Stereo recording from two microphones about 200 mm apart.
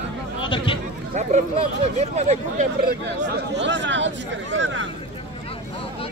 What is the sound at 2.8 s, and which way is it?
Speech, 55° right (ahead or behind).